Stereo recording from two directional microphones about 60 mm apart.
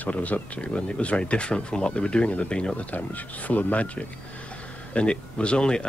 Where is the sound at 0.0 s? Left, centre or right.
Left.